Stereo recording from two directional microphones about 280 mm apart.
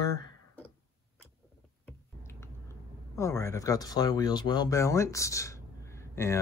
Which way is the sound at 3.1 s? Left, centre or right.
Centre.